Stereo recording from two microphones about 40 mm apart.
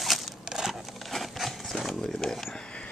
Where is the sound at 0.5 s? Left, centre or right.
Centre.